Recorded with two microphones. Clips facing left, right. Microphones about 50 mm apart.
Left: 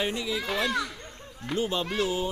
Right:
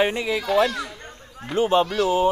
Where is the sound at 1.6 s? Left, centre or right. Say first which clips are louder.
Right 9 dB; right.